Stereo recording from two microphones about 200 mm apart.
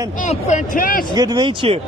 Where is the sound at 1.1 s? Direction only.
20° right (ahead or behind).